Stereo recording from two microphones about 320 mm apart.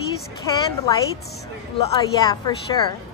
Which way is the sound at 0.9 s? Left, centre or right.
Centre.